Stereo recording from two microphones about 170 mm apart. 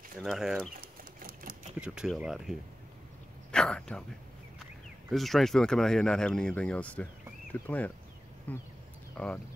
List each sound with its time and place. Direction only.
0.2 s speech: centre (ahead or behind)
0.7 s a sound: 55° right (ahead or behind)
1.8 s speech: 5° right (ahead or behind)
3.5 s speech: 5° left (ahead or behind)
5.1 s speech: centre (ahead or behind)